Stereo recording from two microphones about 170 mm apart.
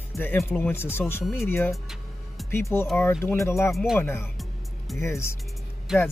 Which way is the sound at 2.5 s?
15° left (ahead or behind).